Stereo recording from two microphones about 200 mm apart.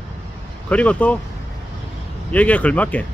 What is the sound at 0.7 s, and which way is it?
Speech, 5° left (ahead or behind).